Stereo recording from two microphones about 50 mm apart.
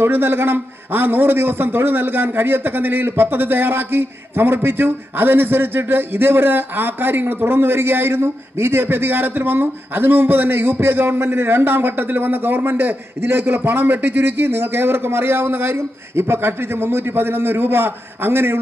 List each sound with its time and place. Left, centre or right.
0.0 s a man's voice: right